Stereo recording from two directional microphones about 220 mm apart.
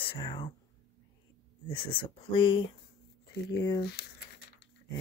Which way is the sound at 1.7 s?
20° left (ahead or behind).